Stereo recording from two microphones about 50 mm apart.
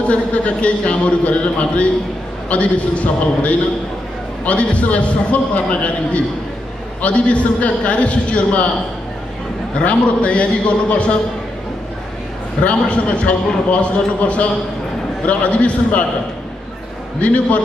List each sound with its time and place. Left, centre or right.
0.0 s a man's voice: left
9.8 s a man's voice: left
12.6 s a man's voice: left
17.2 s a man's voice: left